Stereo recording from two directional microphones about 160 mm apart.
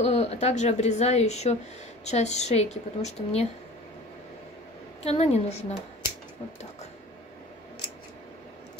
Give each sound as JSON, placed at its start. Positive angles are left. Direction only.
{"t": 0.0, "sound": "speech", "side_deg": 40}
{"t": 5.0, "sound": "speech", "side_deg": 40}